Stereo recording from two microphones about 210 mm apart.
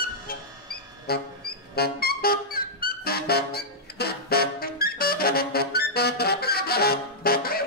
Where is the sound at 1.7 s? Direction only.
45° left (ahead or behind).